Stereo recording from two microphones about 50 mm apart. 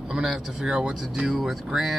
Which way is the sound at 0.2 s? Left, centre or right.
Centre.